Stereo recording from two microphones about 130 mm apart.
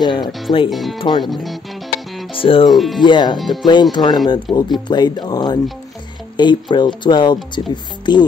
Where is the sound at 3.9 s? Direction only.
35° left (ahead or behind).